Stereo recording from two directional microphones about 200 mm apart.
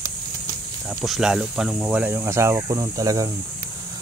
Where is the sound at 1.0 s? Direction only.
Centre (ahead or behind); by 3.3 s 15° right (ahead or behind).